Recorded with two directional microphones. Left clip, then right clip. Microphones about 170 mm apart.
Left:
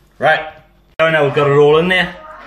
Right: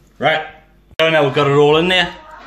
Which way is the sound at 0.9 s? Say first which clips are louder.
Left 1 dB; 5° right (ahead or behind).